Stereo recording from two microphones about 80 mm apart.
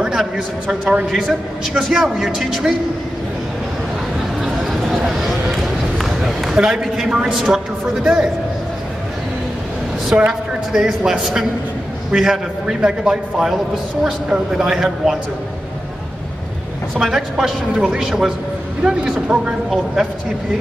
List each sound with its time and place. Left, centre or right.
0.0 s a man's voice: centre
4.4 s a sound: centre
7.3 s a man's voice: centre
10.1 s a man's voice: centre
16.9 s a man's voice: centre